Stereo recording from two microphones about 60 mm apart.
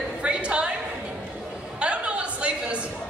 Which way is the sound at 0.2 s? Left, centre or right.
Centre.